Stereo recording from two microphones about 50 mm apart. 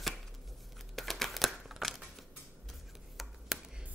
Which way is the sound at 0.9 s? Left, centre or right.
Centre.